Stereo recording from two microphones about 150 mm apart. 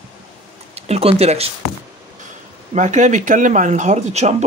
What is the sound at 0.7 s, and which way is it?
Speech, 45° right (ahead or behind).